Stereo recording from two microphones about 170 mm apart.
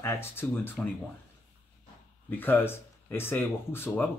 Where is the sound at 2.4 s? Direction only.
10° left (ahead or behind).